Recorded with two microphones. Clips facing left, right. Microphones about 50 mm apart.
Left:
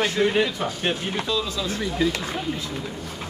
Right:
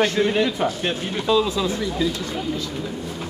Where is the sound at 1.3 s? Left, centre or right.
Centre.